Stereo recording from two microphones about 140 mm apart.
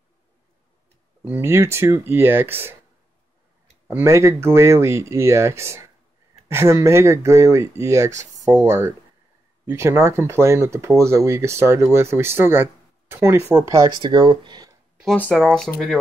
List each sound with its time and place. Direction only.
1.2 s speech: 15° right (ahead or behind)
3.8 s speech: 15° right (ahead or behind)
9.7 s speech: 20° right (ahead or behind)
15.3 s speech: 5° left (ahead or behind)